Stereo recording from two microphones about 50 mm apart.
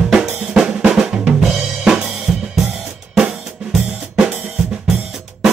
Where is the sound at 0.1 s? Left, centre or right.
Centre.